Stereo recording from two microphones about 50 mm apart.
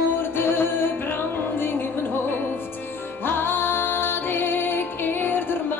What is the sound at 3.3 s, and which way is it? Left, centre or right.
Music, left.